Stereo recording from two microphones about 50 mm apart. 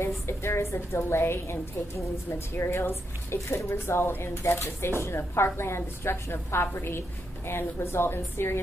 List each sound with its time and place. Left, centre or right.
0.0 s a woman's voice: left